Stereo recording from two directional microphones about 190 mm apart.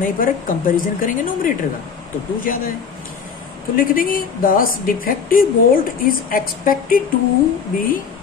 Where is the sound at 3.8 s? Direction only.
50° left (ahead or behind).